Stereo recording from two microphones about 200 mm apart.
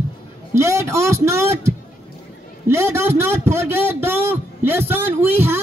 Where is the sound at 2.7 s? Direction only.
15° right (ahead or behind).